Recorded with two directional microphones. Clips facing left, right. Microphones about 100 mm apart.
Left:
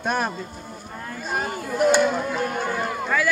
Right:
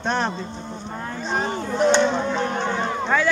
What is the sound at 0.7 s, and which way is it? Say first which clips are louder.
Vehicle: right 4 dB; 30° right (ahead or behind).